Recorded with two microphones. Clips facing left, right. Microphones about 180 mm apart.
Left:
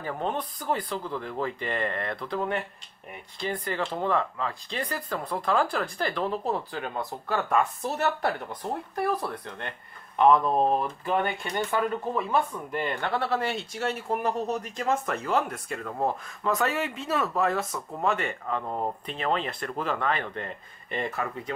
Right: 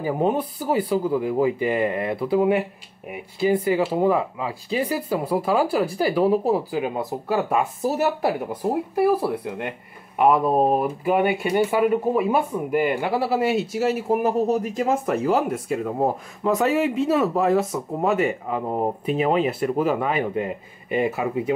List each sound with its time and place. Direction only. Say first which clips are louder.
0.0 s speech: right 9 dB; 10° right (ahead or behind)
17.6 s speech: right 8 dB; 20° right (ahead or behind)
18.0 s speech: right 6 dB; 5° right (ahead or behind)
18.6 s speech: right 10 dB; 20° right (ahead or behind)
19.0 s speech: right 11 dB; 10° right (ahead or behind)